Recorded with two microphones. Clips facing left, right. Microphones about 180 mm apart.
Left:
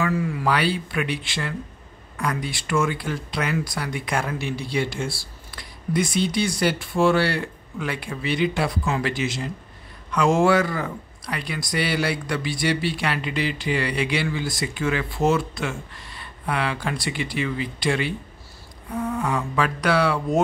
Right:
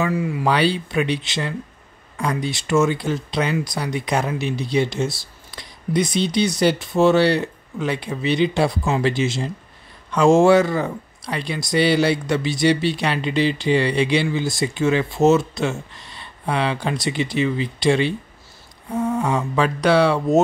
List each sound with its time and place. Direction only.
0.0 s speech: 20° right (ahead or behind)